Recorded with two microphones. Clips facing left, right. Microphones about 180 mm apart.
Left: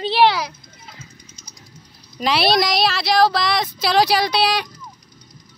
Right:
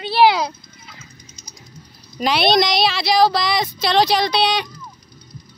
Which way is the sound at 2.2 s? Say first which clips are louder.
Right 1 dB; centre (ahead or behind).